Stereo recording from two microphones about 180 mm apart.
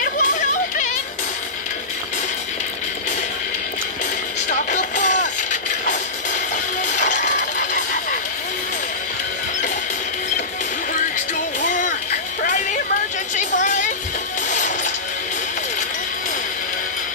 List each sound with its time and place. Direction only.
0.0 s music: 45° left (ahead or behind)
4.5 s music: 45° left (ahead or behind)
11.6 s a sound: 45° left (ahead or behind)
13.6 s music: 45° left (ahead or behind)